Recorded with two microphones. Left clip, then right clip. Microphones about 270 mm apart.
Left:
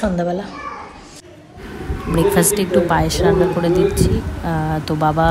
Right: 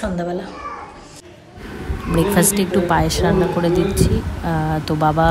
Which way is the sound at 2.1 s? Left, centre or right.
Centre.